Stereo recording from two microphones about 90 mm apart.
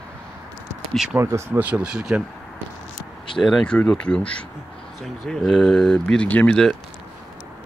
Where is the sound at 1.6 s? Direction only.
10° right (ahead or behind).